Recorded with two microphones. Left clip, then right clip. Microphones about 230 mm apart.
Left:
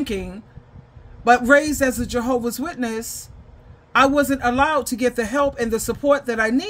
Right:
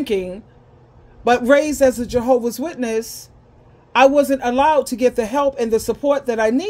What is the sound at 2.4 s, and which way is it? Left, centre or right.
Speech, centre.